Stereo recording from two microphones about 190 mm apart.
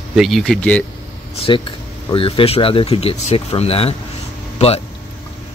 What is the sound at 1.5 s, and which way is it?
Speech, 25° left (ahead or behind).